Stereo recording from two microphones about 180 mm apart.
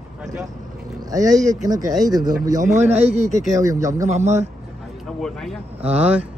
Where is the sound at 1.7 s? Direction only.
20° right (ahead or behind).